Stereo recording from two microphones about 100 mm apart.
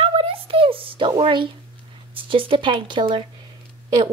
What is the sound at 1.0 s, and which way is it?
A woman's voice, 55° right (ahead or behind).